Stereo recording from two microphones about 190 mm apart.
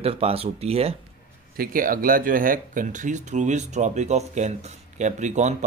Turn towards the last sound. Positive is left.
turn(degrees=-40)  # may be behind; listen again after turning